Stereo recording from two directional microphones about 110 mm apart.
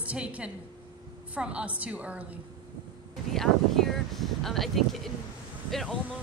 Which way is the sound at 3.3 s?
5° left (ahead or behind).